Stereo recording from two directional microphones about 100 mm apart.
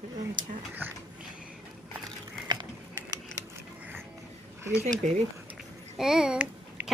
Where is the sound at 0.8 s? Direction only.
20° right (ahead or behind).